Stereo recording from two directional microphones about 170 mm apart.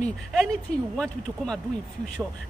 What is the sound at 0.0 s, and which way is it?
A man's voice, 5° left (ahead or behind).